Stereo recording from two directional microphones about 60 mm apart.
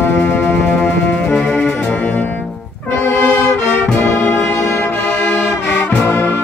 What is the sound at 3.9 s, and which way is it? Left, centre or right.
Brass instrument, left.